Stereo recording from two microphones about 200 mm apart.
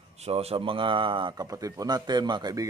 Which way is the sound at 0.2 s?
30° right (ahead or behind).